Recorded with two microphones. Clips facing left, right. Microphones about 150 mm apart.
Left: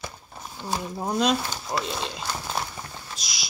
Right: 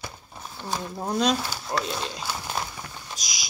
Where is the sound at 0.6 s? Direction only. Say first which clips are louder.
Left 1 dB; 10° left (ahead or behind).